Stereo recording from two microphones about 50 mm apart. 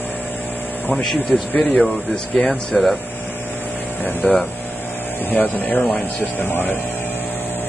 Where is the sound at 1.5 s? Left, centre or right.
Left.